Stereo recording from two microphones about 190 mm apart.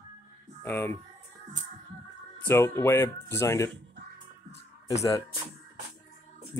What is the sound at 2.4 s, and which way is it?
Speech, 15° left (ahead or behind).